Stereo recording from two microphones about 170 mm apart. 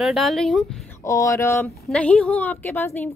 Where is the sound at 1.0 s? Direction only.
20° left (ahead or behind).